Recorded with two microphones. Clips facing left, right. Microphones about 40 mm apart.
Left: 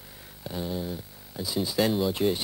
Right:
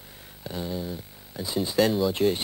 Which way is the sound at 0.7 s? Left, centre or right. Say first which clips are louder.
Even; centre.